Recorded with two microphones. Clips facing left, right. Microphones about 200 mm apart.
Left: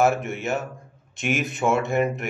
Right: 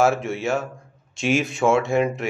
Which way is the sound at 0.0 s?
20° left (ahead or behind).